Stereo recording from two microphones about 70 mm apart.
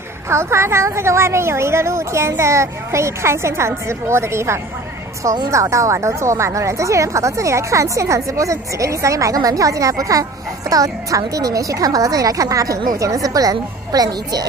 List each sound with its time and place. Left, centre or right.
0.3 s a woman's voice: right
5.2 s a woman's voice: right
5.5 s a woman's voice: right